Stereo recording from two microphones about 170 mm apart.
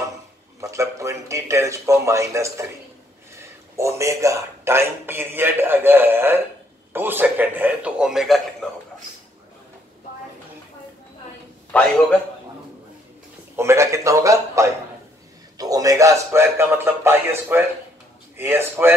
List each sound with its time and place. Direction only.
0.6 s a man's voice: 20° right (ahead or behind); by 8.6 s centre (ahead or behind)
13.6 s speech: 15° right (ahead or behind)